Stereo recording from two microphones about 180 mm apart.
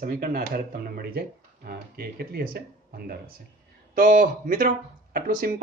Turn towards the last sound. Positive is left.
turn(degrees=-55)  # may be behind; listen again after turning